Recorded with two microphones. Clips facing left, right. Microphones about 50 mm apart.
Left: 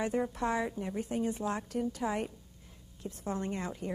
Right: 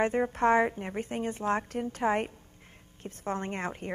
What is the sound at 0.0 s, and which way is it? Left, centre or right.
A woman's voice, right.